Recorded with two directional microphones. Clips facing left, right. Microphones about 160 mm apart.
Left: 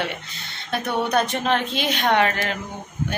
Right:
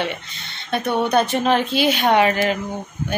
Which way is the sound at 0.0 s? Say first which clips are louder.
Right 3 dB; centre (ahead or behind).